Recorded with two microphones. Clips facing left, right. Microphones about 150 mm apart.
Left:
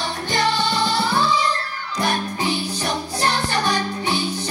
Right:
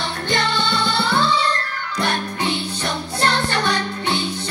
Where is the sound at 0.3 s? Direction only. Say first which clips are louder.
Left 1 dB; 65° right (ahead or behind).